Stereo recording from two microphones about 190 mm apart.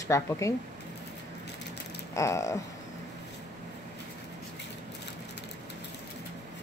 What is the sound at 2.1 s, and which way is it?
Speech, 15° left (ahead or behind).